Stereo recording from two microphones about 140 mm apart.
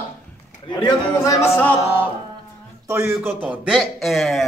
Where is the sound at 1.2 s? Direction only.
20° left (ahead or behind).